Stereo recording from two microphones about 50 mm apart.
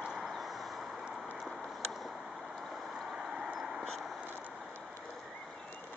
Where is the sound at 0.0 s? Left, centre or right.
Centre.